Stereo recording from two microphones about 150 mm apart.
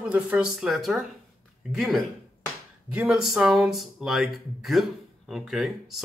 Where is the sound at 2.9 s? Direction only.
5° right (ahead or behind).